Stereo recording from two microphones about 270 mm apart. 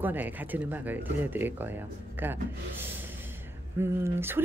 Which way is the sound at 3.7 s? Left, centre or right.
Centre.